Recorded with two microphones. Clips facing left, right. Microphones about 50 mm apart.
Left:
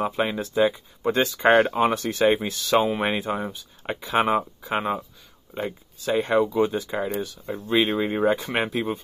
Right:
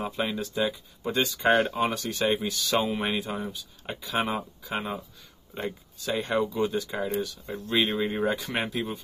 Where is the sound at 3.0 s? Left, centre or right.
Left.